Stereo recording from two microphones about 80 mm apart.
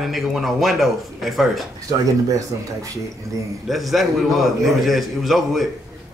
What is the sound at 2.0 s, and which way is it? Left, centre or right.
Speech, right.